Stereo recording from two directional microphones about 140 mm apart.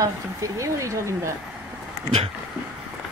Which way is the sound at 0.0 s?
20° right (ahead or behind).